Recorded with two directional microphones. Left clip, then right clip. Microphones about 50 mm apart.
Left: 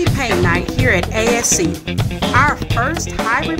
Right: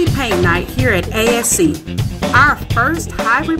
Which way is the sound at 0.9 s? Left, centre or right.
Right.